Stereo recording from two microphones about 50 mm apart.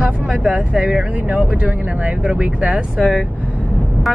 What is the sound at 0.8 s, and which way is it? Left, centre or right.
Speech, centre.